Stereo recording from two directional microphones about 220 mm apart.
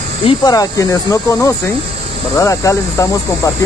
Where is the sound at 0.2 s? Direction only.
20° left (ahead or behind).